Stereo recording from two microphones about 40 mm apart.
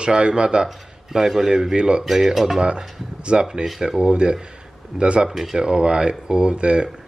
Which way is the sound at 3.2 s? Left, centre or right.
Right.